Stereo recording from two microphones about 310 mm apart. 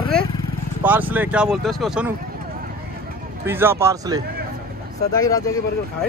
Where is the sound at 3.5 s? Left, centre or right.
Centre.